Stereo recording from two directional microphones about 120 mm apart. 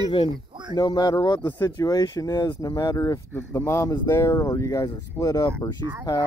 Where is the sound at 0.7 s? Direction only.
35° left (ahead or behind).